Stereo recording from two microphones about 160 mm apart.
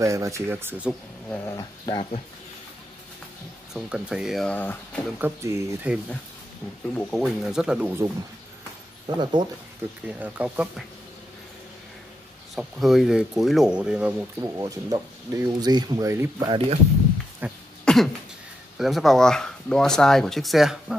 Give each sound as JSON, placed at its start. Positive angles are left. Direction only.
{"t": 0.0, "sound": "speech", "side_deg": -20}
{"t": 1.3, "sound": "dog", "side_deg": 20}
{"t": 3.7, "sound": "speech", "side_deg": -5}
{"t": 5.2, "sound": "speech", "side_deg": -15}
{"t": 6.9, "sound": "speech", "side_deg": 5}
{"t": 9.0, "sound": "speech", "side_deg": -30}
{"t": 10.0, "sound": "speech", "side_deg": -10}
{"t": 12.5, "sound": "speech", "side_deg": 0}
{"t": 14.6, "sound": "speech", "side_deg": -20}
{"t": 16.4, "sound": "speech", "side_deg": -35}
{"t": 17.4, "sound": "speech", "side_deg": -10}
{"t": 17.8, "sound": "cough", "side_deg": 0}
{"t": 18.8, "sound": "speech", "side_deg": 0}